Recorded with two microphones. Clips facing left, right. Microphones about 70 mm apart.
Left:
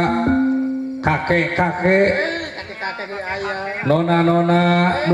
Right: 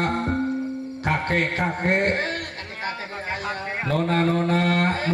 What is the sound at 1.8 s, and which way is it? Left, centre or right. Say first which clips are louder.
Mantra: left 7 dB; left.